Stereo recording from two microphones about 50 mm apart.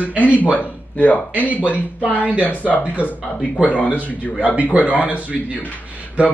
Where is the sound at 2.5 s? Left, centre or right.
Left.